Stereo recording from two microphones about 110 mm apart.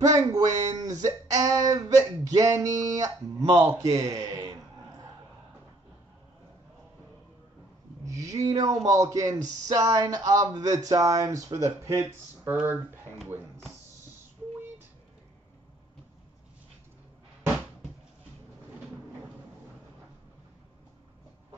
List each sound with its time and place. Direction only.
0.0 s a man's voice: 35° right (ahead or behind)
8.0 s a sound: 30° right (ahead or behind)
8.5 s speech: 35° right (ahead or behind)